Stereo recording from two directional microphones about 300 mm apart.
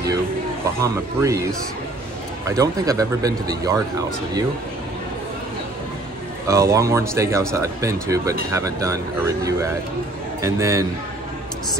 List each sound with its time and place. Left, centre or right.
0.7 s speech: centre
6.4 s speech: centre